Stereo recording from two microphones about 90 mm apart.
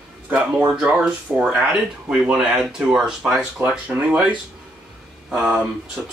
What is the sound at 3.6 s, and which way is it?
Speech, 20° right (ahead or behind).